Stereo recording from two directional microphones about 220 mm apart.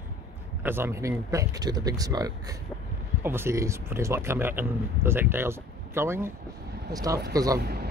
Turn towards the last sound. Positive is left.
turn(degrees=-45)  # may be behind; listen again after turning